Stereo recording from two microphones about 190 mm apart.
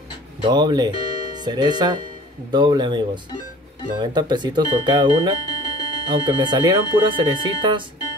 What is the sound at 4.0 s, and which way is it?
Speech, 20° right (ahead or behind).